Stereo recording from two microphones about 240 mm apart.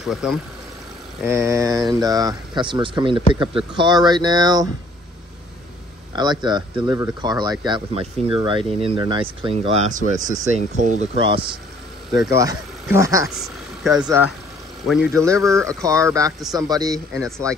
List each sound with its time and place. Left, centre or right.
0.0 s speech: centre
6.4 s speech: centre
13.3 s a sound: centre
15.1 s speech: centre